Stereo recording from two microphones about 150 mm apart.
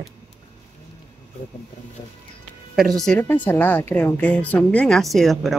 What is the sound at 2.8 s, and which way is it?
A woman's voice, centre (ahead or behind).